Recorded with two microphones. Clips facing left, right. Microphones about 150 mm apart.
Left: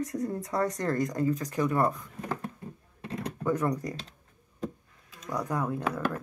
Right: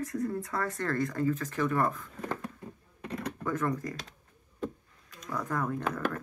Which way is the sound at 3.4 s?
15° left (ahead or behind).